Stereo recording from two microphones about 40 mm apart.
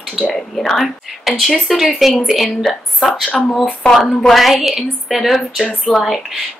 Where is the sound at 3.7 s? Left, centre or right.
Centre.